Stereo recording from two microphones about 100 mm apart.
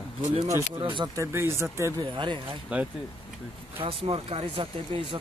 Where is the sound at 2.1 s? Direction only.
55° right (ahead or behind).